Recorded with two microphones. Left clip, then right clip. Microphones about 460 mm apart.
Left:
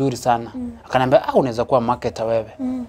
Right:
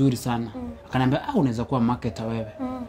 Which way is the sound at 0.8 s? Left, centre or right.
Left.